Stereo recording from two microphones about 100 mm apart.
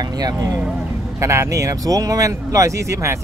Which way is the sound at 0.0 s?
40° right (ahead or behind).